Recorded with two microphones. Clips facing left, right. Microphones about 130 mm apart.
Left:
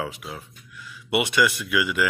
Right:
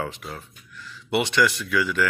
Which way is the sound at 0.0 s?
5° left (ahead or behind).